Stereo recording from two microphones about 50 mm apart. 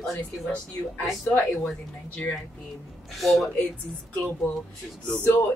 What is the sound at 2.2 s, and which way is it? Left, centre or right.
Speech, left.